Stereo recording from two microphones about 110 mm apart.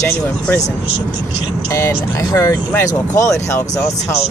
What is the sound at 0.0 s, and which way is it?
Speech, 25° left (ahead or behind).